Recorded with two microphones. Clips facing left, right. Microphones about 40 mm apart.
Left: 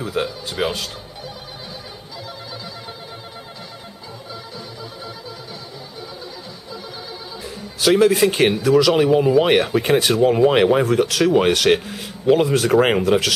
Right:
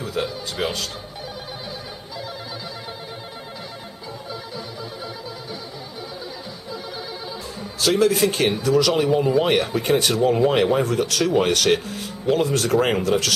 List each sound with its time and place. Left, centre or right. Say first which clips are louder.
0.0 s speech: left 2 dB; centre
7.8 s speech: left 4 dB; centre